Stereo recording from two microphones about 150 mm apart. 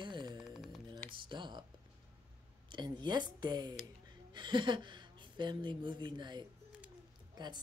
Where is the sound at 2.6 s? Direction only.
30° right (ahead or behind).